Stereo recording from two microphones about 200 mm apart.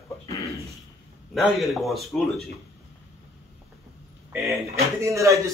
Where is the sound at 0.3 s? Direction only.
15° left (ahead or behind).